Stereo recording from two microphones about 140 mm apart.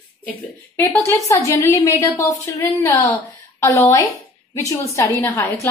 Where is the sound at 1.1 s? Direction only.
20° left (ahead or behind).